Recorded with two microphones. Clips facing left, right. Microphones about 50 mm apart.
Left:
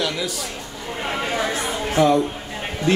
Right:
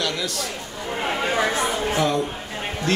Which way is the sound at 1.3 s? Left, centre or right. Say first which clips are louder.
Right 2 dB; right.